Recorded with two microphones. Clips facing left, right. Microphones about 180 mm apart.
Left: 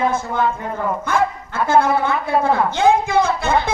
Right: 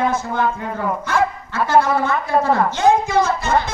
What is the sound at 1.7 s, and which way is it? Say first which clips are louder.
A man's voice: even; 55° left (ahead or behind).